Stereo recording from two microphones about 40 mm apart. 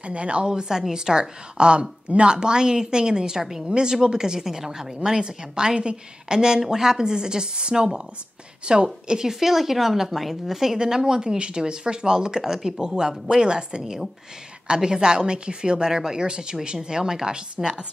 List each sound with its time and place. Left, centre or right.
0.0 s a woman's voice: right
0.5 s a woman's voice: centre
12.8 s a woman's voice: centre